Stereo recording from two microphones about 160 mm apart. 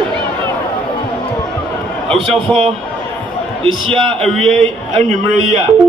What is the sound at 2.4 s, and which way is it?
Speech, 35° right (ahead or behind).